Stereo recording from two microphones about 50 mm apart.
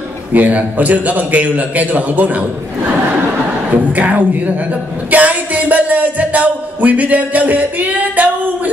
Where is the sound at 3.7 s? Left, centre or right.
Right.